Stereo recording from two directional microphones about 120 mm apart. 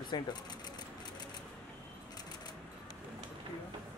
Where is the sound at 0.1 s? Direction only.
35° left (ahead or behind).